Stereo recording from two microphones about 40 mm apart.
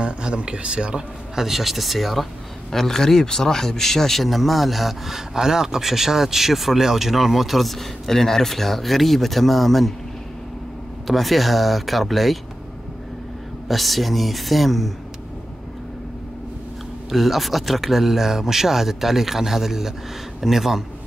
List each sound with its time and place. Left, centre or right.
0.0 s a man's voice: right
1.4 s speech: centre
2.7 s speech: centre
11.1 s speech: centre
13.7 s speech: centre
17.1 s speech: centre